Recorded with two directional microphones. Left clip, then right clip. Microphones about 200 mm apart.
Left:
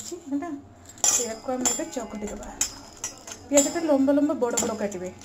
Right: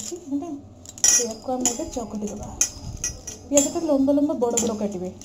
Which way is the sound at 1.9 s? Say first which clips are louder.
Right 2 dB; 15° left (ahead or behind).